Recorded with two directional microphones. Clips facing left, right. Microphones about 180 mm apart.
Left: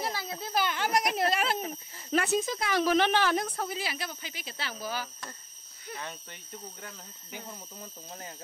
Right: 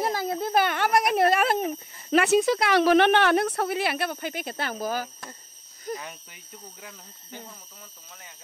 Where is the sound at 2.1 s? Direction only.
70° right (ahead or behind); by 5.1 s 45° right (ahead or behind).